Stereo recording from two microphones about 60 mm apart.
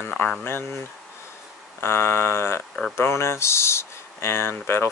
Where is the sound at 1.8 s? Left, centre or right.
Left.